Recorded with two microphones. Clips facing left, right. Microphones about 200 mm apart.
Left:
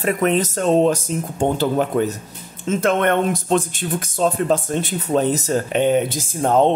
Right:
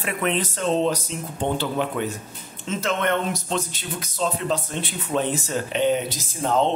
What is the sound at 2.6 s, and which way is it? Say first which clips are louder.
Speech: left 6 dB; 55° left (ahead or behind).